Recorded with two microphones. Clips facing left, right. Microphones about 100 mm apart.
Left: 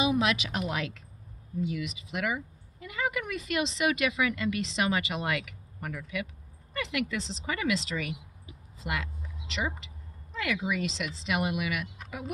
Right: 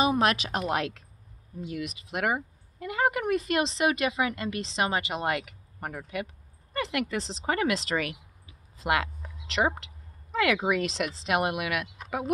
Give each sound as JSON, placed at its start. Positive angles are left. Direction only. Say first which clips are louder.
{"t": 0.0, "sound": "speech", "louder": "right 3 dB", "side_deg": -45}